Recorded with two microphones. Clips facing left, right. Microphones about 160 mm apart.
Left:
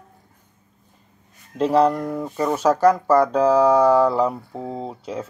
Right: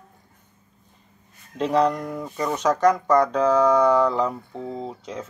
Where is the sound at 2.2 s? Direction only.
30° left (ahead or behind).